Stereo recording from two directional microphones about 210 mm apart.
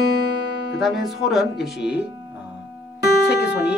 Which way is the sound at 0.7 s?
Centre (ahead or behind).